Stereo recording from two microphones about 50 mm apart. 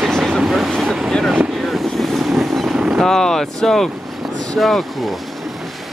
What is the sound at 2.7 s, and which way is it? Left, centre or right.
Vehicle, centre.